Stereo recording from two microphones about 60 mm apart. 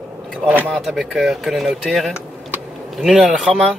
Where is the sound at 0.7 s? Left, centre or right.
Centre.